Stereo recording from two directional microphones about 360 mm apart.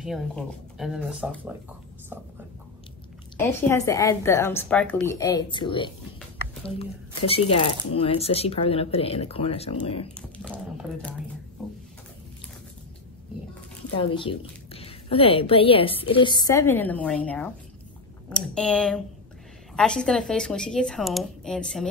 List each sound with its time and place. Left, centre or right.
0.0 s speech: centre
3.3 s a woman's voice: centre
7.2 s a woman's voice: centre
10.1 s speech: centre
13.9 s a woman's voice: centre